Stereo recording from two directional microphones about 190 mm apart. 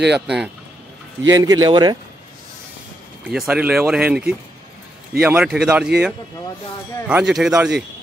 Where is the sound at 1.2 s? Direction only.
20° right (ahead or behind).